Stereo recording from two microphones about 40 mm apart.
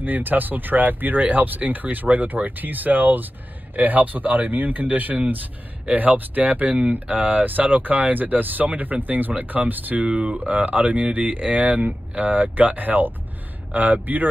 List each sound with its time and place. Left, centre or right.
0.0 s speech: right